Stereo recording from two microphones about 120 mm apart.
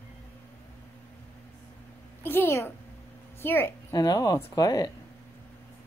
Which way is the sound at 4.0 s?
30° left (ahead or behind).